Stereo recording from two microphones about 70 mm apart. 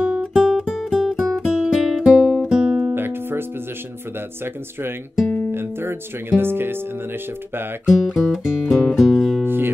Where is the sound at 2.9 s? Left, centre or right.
Right.